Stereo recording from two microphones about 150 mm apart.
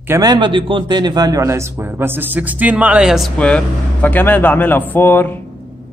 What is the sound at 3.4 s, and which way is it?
A man's voice, 5° left (ahead or behind).